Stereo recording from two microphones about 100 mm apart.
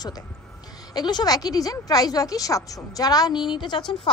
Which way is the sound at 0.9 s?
45° left (ahead or behind).